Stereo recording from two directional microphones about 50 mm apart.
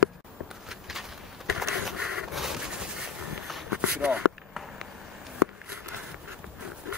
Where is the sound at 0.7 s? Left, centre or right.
Centre.